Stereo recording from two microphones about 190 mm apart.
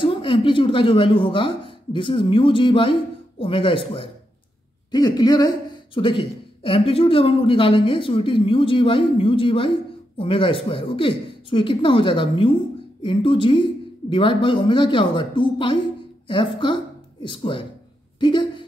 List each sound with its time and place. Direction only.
0.0 s a woman's voice: 25° left (ahead or behind)